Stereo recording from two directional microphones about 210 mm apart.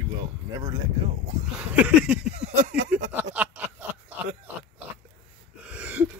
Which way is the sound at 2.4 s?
35° right (ahead or behind).